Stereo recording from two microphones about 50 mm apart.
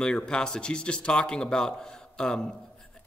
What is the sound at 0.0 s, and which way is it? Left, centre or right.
A man's voice, centre.